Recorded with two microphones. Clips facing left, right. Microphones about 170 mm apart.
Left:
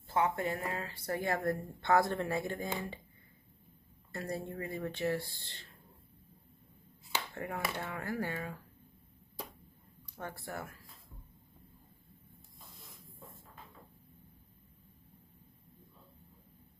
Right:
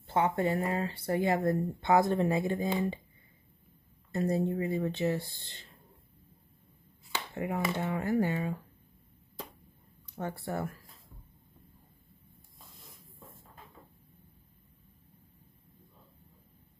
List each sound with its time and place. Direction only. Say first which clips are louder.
0.0 s speech: right 4 dB; 25° right (ahead or behind)
4.1 s speech: right 10 dB; 20° right (ahead or behind)
7.3 s speech: right 9 dB; 20° right (ahead or behind)
10.1 s speech: right 7 dB; 25° right (ahead or behind)